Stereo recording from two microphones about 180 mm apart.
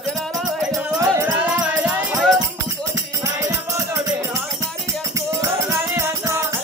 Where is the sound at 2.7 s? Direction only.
15° right (ahead or behind).